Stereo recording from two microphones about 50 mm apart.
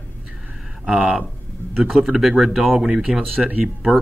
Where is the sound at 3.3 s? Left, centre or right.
Right.